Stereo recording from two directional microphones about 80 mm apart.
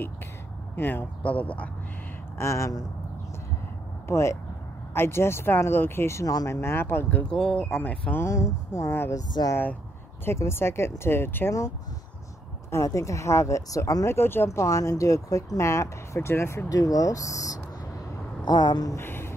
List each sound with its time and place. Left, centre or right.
0.7 s speech: left
2.3 s speech: left
4.1 s speech: left
7.2 s speech: centre
7.8 s speech: centre
8.2 s speech: left
9.4 s speech: left
10.2 s speech: left
12.7 s speech: left
16.6 s speech: left
18.4 s speech: left
18.9 s a sound: left